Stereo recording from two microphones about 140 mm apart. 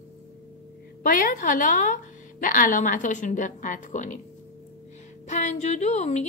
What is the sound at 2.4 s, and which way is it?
A woman's voice, 75° left (ahead or behind).